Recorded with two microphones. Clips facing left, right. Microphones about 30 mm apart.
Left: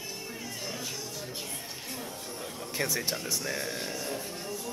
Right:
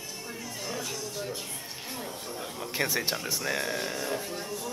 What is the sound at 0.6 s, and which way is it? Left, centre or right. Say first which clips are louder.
Speech: right 3 dB; centre.